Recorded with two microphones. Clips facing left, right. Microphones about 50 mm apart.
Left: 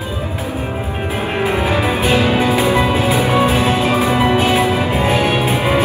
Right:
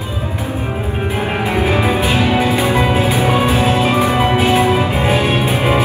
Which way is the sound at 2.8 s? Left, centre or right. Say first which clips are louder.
Even; right.